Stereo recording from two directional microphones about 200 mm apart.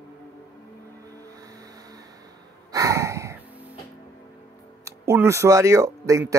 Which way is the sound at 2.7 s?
15° right (ahead or behind).